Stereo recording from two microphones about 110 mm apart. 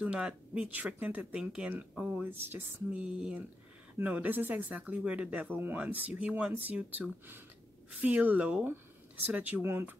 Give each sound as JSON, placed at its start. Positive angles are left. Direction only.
{"t": 0.0, "sound": "speech", "side_deg": -10}